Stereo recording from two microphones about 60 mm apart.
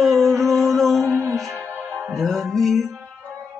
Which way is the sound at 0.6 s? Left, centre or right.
Centre.